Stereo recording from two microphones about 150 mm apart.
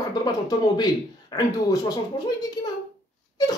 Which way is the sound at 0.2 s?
25° left (ahead or behind).